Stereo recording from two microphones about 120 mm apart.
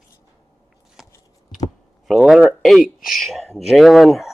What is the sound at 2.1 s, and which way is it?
Speech, centre (ahead or behind).